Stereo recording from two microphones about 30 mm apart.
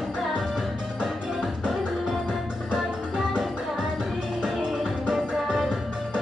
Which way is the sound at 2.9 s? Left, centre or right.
Right.